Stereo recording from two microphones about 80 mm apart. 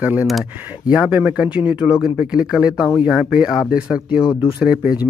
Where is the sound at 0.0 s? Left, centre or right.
Right.